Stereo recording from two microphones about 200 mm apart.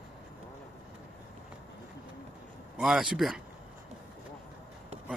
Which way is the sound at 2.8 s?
5° right (ahead or behind).